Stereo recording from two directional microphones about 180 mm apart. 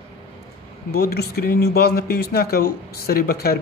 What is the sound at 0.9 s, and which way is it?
Speech, 60° left (ahead or behind).